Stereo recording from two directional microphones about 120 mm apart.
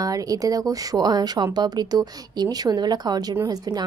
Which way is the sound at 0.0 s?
30° right (ahead or behind).